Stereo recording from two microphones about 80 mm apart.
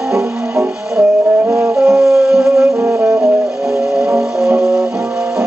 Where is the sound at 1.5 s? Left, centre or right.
Centre.